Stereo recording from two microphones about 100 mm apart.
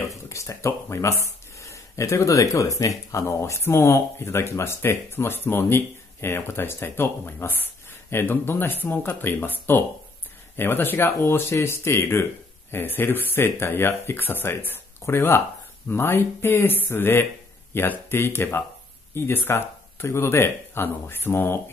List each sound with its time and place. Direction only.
0.1 s speech: 30° left (ahead or behind)